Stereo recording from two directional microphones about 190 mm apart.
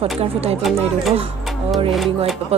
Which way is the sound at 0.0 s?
30° right (ahead or behind).